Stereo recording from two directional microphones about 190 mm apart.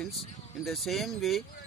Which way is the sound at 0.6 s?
Centre (ahead or behind).